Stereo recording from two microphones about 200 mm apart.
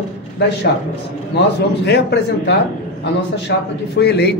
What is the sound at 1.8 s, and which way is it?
Speech, 55° left (ahead or behind).